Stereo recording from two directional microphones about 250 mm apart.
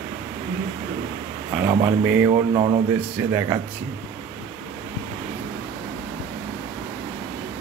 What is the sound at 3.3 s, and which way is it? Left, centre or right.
Speech, centre.